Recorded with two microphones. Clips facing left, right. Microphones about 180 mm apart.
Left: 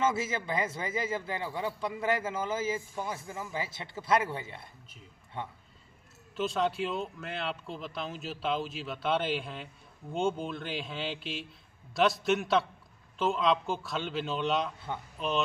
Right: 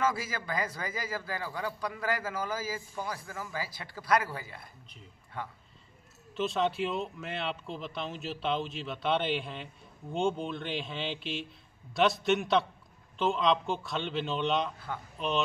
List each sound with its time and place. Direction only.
0.0 s a man's voice: 25° left (ahead or behind)
6.3 s speech: centre (ahead or behind)